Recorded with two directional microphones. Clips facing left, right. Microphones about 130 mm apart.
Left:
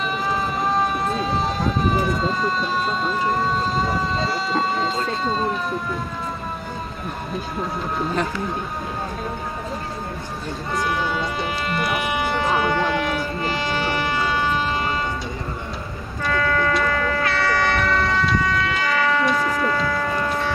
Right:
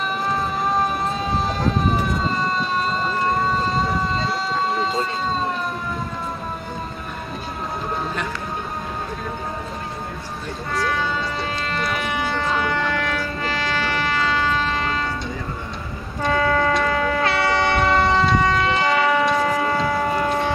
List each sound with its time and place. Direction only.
0.3 s run: centre (ahead or behind)
10.7 s speech: 20° left (ahead or behind)
12.4 s a sound: 15° left (ahead or behind)
16.2 s vehicle: 25° right (ahead or behind)
16.8 s train: 25° right (ahead or behind)
18.3 s emergency vehicle: 25° right (ahead or behind)
19.3 s a sound: 25° right (ahead or behind)